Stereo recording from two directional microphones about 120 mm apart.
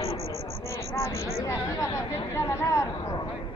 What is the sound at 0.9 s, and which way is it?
Speech, 25° left (ahead or behind).